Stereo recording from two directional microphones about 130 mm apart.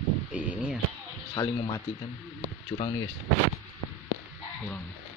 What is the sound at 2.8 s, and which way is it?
Speech, 35° left (ahead or behind).